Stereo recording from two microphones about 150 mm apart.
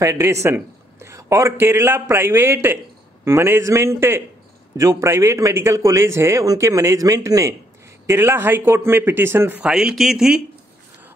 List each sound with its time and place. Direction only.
0.0 s a man's voice: 20° right (ahead or behind); by 10.4 s 5° right (ahead or behind)